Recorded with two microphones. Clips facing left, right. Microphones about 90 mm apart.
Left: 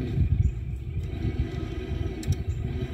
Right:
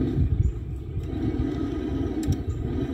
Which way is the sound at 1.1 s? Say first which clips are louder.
Right 8 dB; 35° right (ahead or behind).